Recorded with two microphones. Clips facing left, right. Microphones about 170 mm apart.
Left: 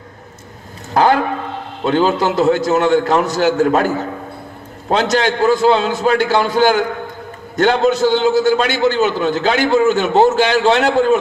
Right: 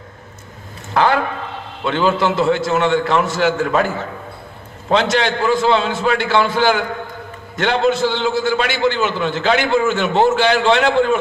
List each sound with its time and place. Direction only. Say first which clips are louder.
0.9 s a man's voice: left 3 dB; 40° left (ahead or behind)